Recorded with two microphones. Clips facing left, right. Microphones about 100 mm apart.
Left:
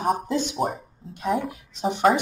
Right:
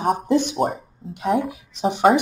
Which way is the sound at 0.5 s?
Centre (ahead or behind).